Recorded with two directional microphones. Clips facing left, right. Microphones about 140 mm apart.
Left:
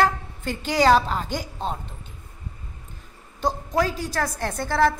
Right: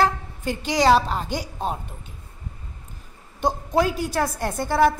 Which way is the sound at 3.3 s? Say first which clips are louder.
Right 2 dB; 20° right (ahead or behind).